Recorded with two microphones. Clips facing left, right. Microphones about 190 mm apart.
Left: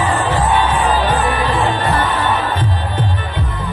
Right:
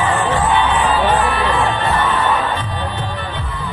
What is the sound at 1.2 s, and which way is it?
Music, 20° left (ahead or behind).